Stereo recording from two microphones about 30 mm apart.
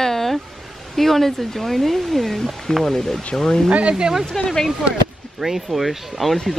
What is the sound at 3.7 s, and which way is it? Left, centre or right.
Speech, right.